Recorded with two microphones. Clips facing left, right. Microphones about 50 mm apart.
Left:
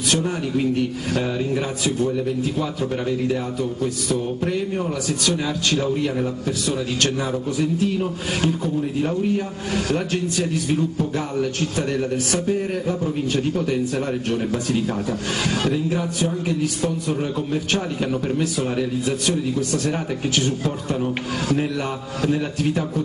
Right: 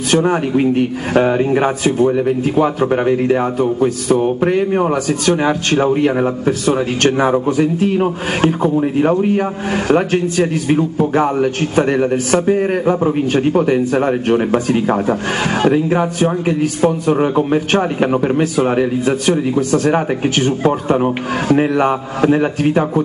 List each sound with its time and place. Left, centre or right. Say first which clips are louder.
0.1 s a man's voice: right 9 dB; right